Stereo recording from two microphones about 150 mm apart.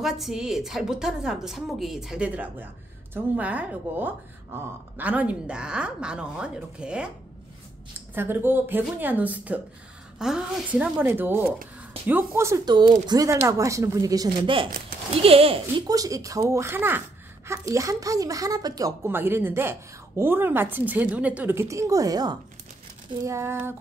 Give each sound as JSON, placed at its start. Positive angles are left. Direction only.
{"t": 0.0, "sound": "a woman's voice", "side_deg": 0}
{"t": 8.1, "sound": "speech", "side_deg": -15}
{"t": 15.9, "sound": "speech", "side_deg": -25}